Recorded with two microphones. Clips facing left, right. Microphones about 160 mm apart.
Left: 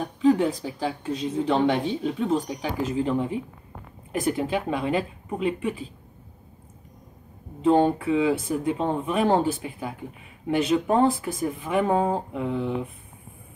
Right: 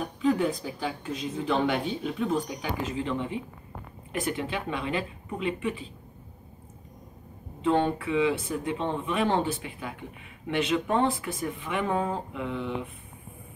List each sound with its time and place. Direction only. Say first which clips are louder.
0.0 s speech: left 5 dB; 30° left (ahead or behind)
7.6 s speech: left 5 dB; 35° left (ahead or behind)